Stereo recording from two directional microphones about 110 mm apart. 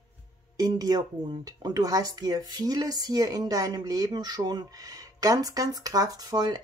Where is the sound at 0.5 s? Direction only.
35° right (ahead or behind).